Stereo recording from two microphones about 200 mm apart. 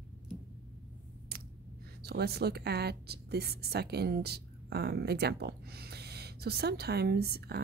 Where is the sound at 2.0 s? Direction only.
55° right (ahead or behind).